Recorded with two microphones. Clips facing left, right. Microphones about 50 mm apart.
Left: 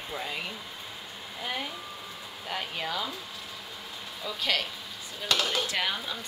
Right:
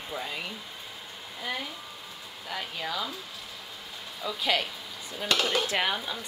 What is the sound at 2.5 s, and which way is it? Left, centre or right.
Speech, centre.